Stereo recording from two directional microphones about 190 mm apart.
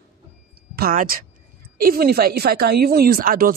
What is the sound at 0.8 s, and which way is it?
Speech, 50° right (ahead or behind).